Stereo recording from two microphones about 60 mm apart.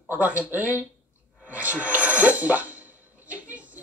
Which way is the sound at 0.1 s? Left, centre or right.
Right.